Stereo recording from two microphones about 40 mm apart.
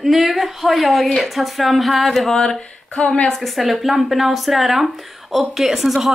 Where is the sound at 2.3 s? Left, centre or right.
Centre.